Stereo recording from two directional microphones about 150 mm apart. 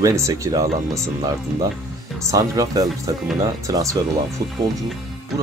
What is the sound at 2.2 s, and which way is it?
Speech, 20° right (ahead or behind).